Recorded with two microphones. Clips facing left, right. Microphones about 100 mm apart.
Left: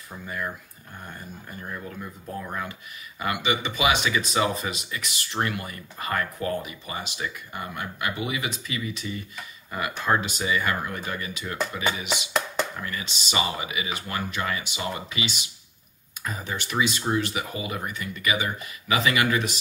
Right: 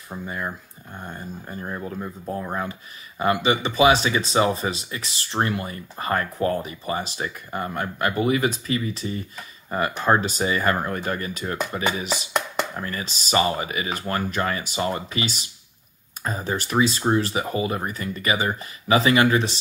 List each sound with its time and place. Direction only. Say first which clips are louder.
0.1 s speech: right 3 dB; 25° right (ahead or behind)